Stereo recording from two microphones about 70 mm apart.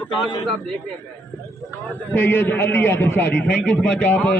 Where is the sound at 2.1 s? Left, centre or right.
Left.